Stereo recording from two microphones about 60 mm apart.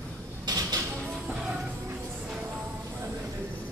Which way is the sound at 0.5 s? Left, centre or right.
Right.